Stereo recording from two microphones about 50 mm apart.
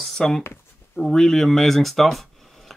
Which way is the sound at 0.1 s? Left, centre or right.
Centre.